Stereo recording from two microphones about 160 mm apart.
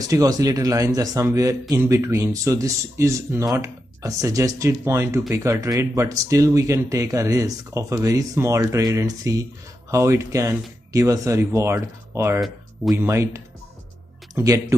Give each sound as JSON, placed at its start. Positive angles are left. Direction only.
{"t": 0.0, "sound": "speech", "side_deg": -20}